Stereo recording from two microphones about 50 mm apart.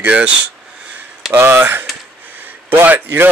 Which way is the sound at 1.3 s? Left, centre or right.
Right.